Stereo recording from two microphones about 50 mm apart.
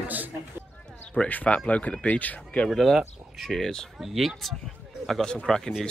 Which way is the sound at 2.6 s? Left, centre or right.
Centre.